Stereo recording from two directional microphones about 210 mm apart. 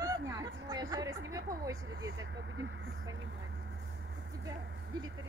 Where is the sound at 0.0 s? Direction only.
15° right (ahead or behind).